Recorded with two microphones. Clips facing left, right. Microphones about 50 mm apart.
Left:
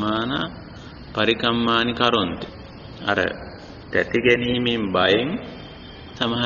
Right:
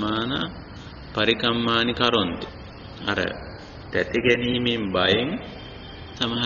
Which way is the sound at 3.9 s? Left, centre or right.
Centre.